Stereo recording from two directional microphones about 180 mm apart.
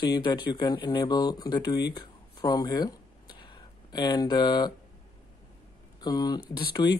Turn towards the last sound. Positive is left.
turn(degrees=25)  # may be behind; listen again after turning